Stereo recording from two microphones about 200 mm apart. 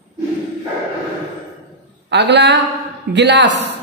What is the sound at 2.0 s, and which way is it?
A woman's voice, 60° right (ahead or behind).